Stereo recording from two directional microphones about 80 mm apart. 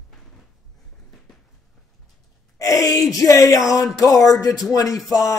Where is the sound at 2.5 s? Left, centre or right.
Left.